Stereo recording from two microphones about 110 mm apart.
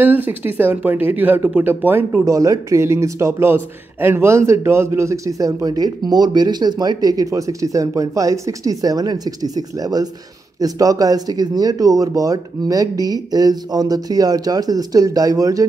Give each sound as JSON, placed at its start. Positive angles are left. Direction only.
{"t": 0.0, "sound": "speech", "side_deg": -15}